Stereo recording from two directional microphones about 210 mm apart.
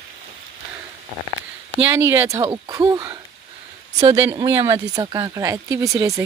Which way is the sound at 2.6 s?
15° right (ahead or behind).